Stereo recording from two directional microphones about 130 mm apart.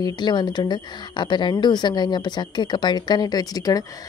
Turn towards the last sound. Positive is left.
turn(degrees=30)  # may be behind; listen again after turning